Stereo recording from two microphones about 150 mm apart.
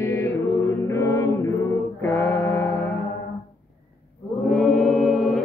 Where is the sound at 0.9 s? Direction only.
20° left (ahead or behind).